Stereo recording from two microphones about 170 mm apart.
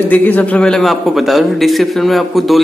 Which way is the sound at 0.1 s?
10° left (ahead or behind).